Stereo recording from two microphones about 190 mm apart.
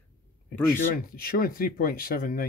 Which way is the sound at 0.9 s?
50° left (ahead or behind).